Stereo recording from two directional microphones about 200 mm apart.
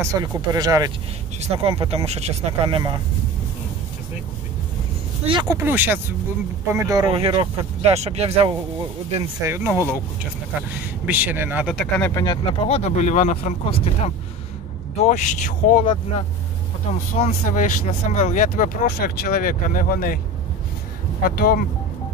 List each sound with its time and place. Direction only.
0.0 s speech: 15° right (ahead or behind)
1.4 s speech: 30° right (ahead or behind)
5.2 s speech: 25° right (ahead or behind)
5.7 s speech: 10° right (ahead or behind); by 8.5 s 30° right (ahead or behind)
9.5 s speech: 15° right (ahead or behind)
12.1 s speech: 20° left (ahead or behind); by 15.8 s 40° left (ahead or behind)
15.8 s speech: 25° left (ahead or behind)
17.2 s speech: 40° left (ahead or behind)
21.2 s speech: 45° left (ahead or behind)